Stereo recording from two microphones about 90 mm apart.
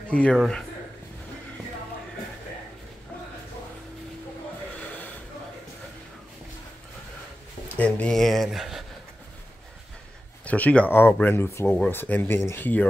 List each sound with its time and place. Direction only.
0.1 s a man's voice: 15° left (ahead or behind)
4.7 s snort: 20° left (ahead or behind)
7.7 s speech: 15° left (ahead or behind)
8.1 s speech: 5° left (ahead or behind)
10.4 s speech: 15° left (ahead or behind)